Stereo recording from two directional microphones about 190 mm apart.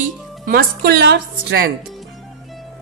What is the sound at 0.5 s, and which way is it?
A woman's voice, 55° right (ahead or behind).